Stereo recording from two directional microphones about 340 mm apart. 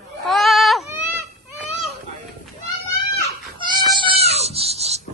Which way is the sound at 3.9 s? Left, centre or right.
Centre.